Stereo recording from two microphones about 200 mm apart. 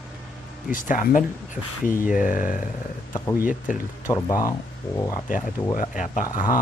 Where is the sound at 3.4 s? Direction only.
40° left (ahead or behind).